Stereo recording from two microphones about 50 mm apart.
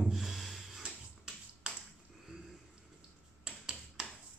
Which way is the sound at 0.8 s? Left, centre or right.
Centre.